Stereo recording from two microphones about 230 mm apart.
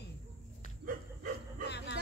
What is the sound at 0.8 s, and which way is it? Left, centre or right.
Dog, right.